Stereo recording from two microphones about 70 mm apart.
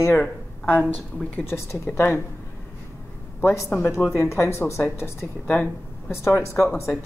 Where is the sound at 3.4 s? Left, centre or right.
Left.